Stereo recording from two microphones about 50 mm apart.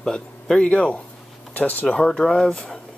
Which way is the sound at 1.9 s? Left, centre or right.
Centre.